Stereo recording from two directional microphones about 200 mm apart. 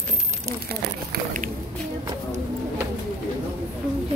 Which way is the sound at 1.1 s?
40° right (ahead or behind).